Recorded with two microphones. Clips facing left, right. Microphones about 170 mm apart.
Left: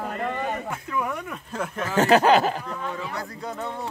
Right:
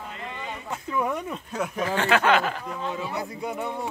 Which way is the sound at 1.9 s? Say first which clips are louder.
Left 5 dB; 40° left (ahead or behind).